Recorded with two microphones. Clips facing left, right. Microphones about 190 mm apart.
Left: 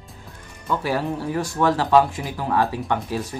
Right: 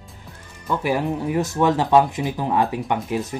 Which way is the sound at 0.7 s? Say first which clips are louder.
Right 2 dB; 15° right (ahead or behind).